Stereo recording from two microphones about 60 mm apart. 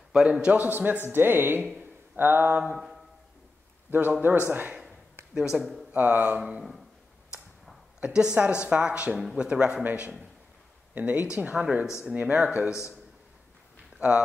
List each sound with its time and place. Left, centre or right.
0.1 s speech: centre
0.6 s speech: right
1.8 s a sound: right
4.2 s speech: right
5.3 s speech: centre
5.9 s speech: right
8.0 s a woman's voice: centre; by 11.2 s right
11.3 s speech: centre
13.9 s speech: centre